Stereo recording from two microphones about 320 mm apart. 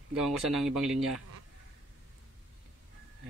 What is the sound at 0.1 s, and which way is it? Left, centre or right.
A man's voice, centre.